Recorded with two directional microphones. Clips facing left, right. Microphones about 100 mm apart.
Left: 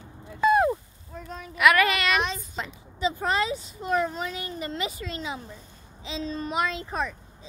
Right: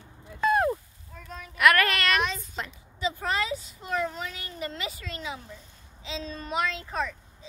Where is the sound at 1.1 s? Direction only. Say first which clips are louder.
Left 4 dB; 25° left (ahead or behind).